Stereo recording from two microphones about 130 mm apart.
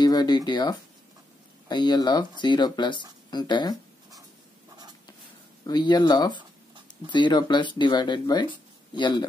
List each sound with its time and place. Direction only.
0.0 s speech: 30° left (ahead or behind)
5.7 s speech: 35° left (ahead or behind)